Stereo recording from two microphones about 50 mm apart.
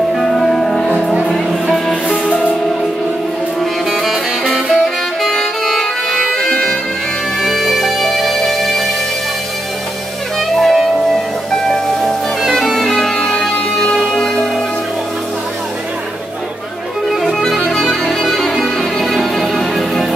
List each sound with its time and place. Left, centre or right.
0.1 s music: centre
2.2 s music: left
3.9 s music: centre
7.4 s music: centre
10.5 s music: centre
17.1 s violin: centre
18.6 s music: centre